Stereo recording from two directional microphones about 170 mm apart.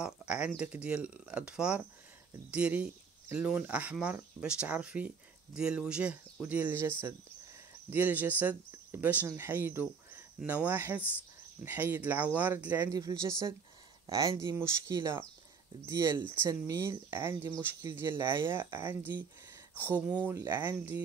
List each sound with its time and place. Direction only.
0.0 s speech: 5° right (ahead or behind)